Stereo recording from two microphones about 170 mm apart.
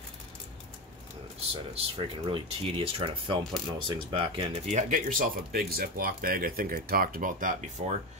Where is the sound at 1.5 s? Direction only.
30° right (ahead or behind).